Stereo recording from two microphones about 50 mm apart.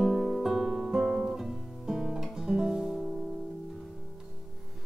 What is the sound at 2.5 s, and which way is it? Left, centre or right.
Music, centre.